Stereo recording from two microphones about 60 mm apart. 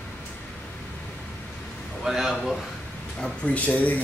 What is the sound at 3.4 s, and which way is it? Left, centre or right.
Speech, left.